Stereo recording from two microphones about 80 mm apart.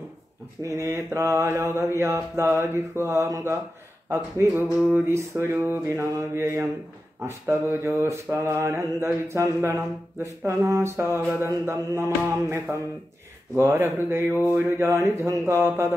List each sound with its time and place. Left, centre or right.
0.6 s mantra: right
13.6 s speech: right
14.6 s mantra: right